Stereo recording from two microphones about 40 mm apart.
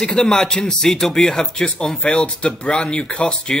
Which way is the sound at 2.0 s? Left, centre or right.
Left.